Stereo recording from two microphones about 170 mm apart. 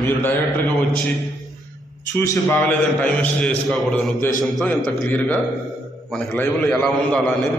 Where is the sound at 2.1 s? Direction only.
15° left (ahead or behind).